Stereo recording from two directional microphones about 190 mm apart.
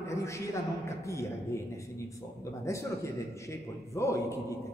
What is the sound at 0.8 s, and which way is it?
A man's voice, 15° left (ahead or behind).